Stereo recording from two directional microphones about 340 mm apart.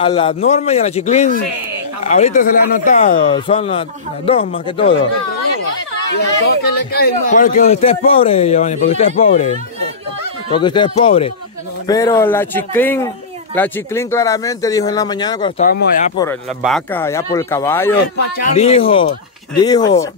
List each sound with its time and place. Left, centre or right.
0.0 s a man's voice: centre
6.1 s a man's voice: left
16.2 s speech: centre
17.9 s speech: left; by 20.1 s centre